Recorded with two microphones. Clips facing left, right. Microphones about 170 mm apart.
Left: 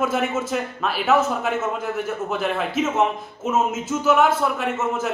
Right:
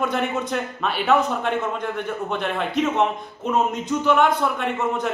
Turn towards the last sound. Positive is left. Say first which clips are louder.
# even
turn(degrees=5)  # may be behind; listen again after turning